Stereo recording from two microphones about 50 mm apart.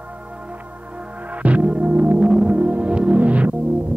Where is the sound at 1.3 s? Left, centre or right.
Right.